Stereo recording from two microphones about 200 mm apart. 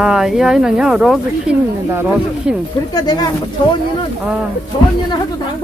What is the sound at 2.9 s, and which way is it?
Speech, 20° left (ahead or behind).